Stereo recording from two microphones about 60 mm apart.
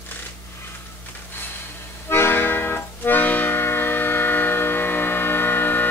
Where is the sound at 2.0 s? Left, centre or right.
Left.